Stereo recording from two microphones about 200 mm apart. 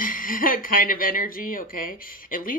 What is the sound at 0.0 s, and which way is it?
Speech, 45° left (ahead or behind).